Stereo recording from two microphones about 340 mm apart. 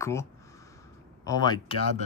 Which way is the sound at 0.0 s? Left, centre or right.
Centre.